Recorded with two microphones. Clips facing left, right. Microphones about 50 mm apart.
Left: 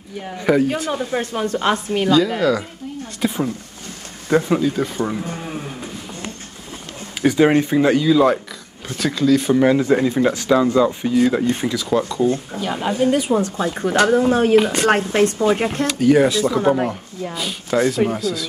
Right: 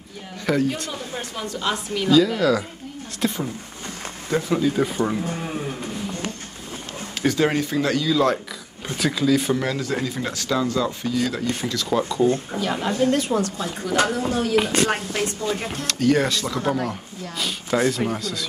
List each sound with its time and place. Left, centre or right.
0.5 s speech: centre
0.9 s a woman's voice: left
2.0 s speech: centre
4.3 s speech: left
4.6 s speech: centre
7.2 s speech: centre
8.8 s speech: centre
9.6 s speech: left
12.1 s speech: centre
13.4 s a woman's voice: left
15.9 s speech: centre